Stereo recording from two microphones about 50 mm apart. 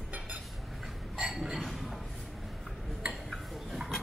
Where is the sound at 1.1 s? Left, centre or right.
Centre.